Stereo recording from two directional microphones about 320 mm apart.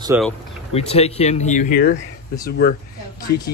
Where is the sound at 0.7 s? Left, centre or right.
Centre.